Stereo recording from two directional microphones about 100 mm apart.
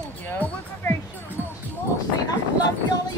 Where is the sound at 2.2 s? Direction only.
40° left (ahead or behind).